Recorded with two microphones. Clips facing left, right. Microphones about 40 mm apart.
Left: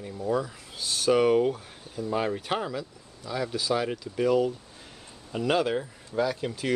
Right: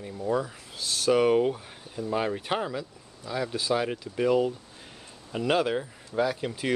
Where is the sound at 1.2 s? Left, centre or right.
Centre.